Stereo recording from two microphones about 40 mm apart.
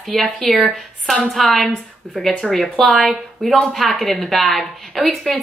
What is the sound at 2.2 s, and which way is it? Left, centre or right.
Speech, centre.